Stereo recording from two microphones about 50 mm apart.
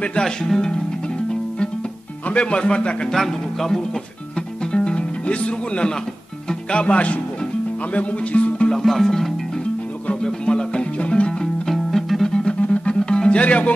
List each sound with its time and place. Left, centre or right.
0.2 s speech: centre
2.2 s a man's voice: left
3.1 s speech: centre
4.7 s music: centre
6.7 s a man's voice: left
8.6 s music: centre
10.2 s music: centre
11.6 s music: centre
12.3 s music: centre